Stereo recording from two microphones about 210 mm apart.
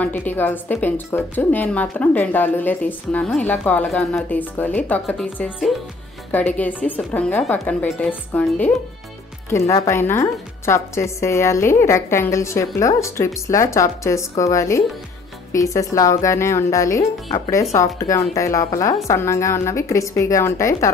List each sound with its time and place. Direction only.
0.0 s speech: 5° left (ahead or behind)
9.8 s speech: 10° left (ahead or behind)